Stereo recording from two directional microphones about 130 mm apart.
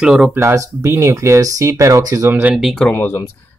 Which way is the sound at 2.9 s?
15° left (ahead or behind).